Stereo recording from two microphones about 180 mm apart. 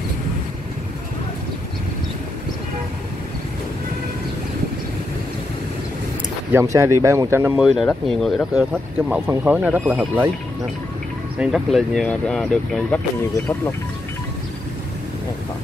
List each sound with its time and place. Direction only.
6.5 s speech: 15° right (ahead or behind)
7.6 s speech: centre (ahead or behind)
8.9 s speech: 10° right (ahead or behind)
11.3 s speech: centre (ahead or behind)